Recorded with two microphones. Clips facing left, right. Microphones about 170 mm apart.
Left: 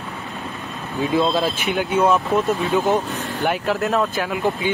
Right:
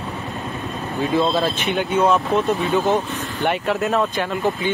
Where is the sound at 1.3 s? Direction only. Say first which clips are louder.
Even; 10° left (ahead or behind).